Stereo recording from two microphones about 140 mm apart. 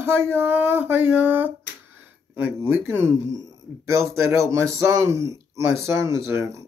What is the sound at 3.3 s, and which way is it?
A man's voice, 20° right (ahead or behind).